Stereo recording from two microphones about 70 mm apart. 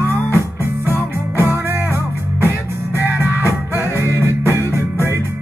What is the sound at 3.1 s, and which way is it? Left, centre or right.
Music, right.